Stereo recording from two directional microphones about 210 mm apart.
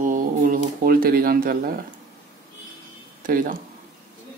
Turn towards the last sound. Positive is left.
turn(degrees=-40)  # may be behind; listen again after turning